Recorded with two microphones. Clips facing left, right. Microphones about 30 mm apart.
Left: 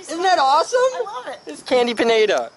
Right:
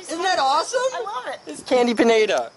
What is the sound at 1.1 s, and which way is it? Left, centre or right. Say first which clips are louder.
Speech: right 1 dB; right.